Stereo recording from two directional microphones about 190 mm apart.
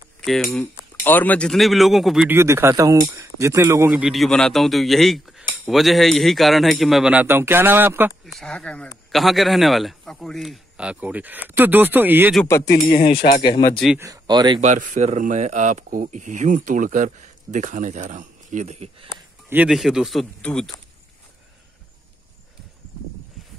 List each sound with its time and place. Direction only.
0.2 s a man's voice: centre (ahead or behind)
8.3 s a man's voice: 5° left (ahead or behind)
12.7 s speech: 40° left (ahead or behind)
13.4 s speech: 20° left (ahead or behind)
13.9 s speech: 15° right (ahead or behind)
14.6 s speech: 40° right (ahead or behind)
19.0 s speech: 5° right (ahead or behind)